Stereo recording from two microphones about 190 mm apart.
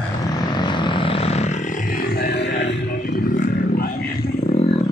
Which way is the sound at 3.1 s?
50° left (ahead or behind).